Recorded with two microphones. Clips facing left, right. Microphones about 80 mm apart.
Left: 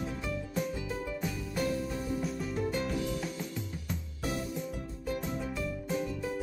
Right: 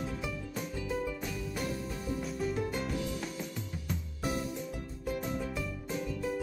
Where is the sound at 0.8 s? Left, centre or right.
Centre.